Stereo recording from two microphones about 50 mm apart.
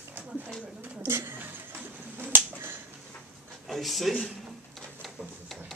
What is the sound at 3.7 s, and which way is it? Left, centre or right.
Speech, centre.